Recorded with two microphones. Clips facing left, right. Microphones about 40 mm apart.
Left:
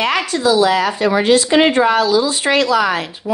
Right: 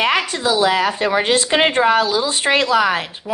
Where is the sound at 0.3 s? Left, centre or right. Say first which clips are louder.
Left 3 dB; right.